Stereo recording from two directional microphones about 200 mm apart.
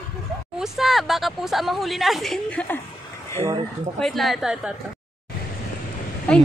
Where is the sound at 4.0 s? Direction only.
Centre (ahead or behind).